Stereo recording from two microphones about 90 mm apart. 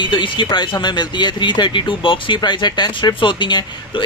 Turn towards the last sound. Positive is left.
turn(degrees=60)  # may be behind; listen again after turning